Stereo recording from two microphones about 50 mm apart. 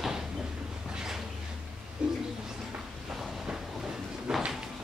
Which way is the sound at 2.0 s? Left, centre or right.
Centre.